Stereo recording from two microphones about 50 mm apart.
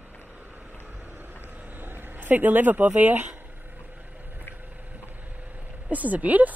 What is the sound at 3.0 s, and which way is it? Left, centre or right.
Speech, right.